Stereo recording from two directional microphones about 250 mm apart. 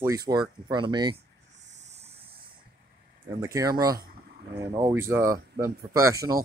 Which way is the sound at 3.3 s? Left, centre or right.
Centre.